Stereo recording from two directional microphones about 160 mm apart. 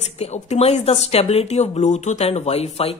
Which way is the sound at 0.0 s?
45° left (ahead or behind).